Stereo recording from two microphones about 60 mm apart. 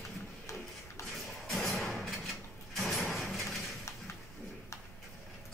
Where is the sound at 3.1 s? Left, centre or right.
Centre.